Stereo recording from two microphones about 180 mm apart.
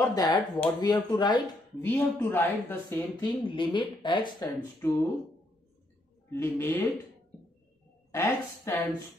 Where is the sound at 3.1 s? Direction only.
25° left (ahead or behind).